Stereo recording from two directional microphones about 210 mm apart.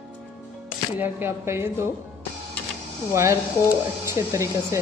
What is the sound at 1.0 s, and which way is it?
Speech, 10° right (ahead or behind).